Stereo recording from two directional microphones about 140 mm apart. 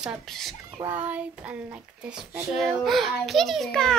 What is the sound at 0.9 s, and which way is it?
Child singing, 10° right (ahead or behind).